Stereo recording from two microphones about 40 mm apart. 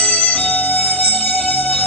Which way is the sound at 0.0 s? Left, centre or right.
Left.